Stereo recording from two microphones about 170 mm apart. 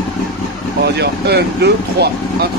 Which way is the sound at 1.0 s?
70° right (ahead or behind).